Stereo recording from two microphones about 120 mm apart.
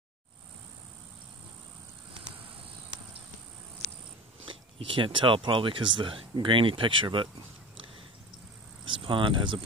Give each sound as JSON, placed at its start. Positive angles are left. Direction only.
{"t": 4.5, "sound": "speech", "side_deg": -45}
{"t": 8.8, "sound": "speech", "side_deg": -45}